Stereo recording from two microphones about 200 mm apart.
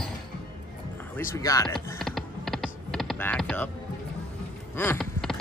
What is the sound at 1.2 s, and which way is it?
Speech, 15° left (ahead or behind).